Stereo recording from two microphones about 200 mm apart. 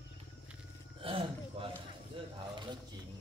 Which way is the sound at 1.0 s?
25° right (ahead or behind).